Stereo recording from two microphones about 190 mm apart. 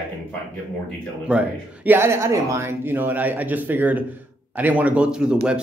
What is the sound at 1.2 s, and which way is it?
A man's voice, 5° right (ahead or behind).